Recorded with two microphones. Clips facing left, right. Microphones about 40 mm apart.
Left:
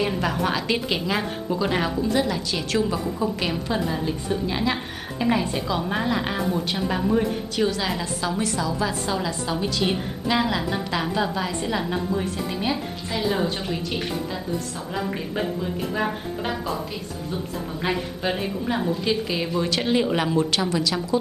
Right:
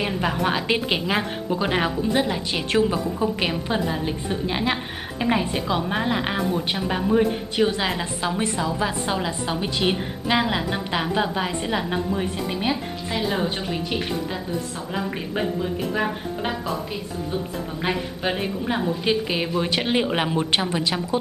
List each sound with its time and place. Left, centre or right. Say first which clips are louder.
0.2 s a woman's voice: right 1 dB; centre
7.5 s a woman's voice: right 2 dB; right; by 16.8 s centre
18.2 s a woman's voice: right 2 dB; centre
19.0 s a woman's voice: right 2 dB; right